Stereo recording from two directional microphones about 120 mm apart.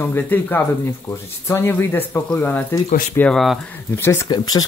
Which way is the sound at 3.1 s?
5° left (ahead or behind).